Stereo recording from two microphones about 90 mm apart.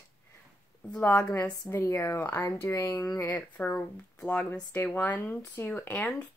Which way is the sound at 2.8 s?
25° left (ahead or behind).